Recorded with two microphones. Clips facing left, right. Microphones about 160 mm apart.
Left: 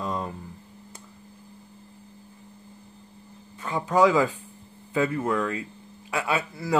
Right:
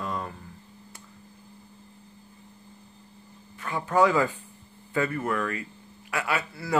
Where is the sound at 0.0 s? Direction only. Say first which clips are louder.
Left 3 dB; 20° left (ahead or behind).